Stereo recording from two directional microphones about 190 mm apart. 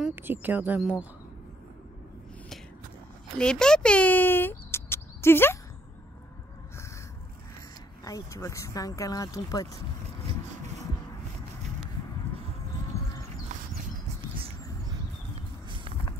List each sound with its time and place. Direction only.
0.0 s speech: 10° right (ahead or behind)
3.3 s speech: 5° left (ahead or behind)
8.0 s speech: 15° left (ahead or behind)
13.5 s a sound: 40° right (ahead or behind)